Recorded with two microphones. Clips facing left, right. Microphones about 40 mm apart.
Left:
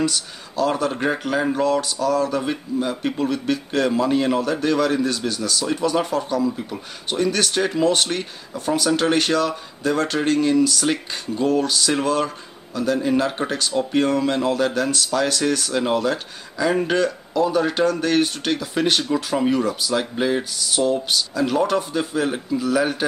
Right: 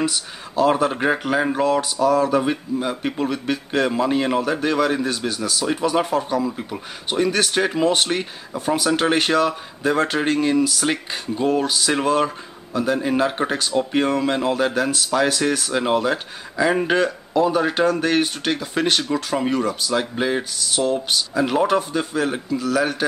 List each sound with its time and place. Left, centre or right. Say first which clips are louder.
0.0 s speech: even; centre
21.4 s speech: right 2 dB; centre
21.7 s a man's voice: right 1 dB; centre